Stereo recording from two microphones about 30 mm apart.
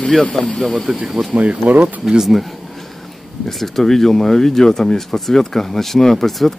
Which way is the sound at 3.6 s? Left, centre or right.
Centre.